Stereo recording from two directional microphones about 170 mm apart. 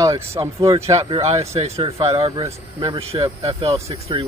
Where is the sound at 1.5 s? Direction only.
35° right (ahead or behind).